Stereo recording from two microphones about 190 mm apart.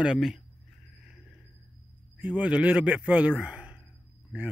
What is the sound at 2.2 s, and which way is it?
Speech, 5° right (ahead or behind).